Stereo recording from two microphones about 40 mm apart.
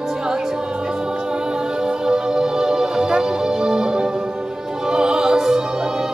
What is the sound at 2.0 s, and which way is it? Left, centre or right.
Music, centre.